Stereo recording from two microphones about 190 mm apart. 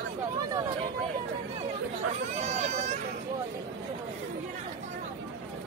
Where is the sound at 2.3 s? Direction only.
35° right (ahead or behind).